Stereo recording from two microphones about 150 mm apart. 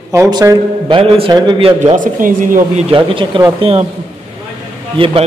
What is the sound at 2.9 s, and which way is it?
Speech, 35° right (ahead or behind).